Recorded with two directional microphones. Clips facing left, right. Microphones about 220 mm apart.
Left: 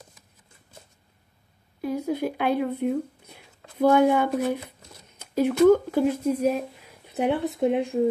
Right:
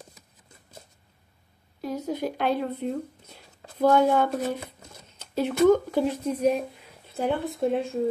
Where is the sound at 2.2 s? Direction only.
10° left (ahead or behind).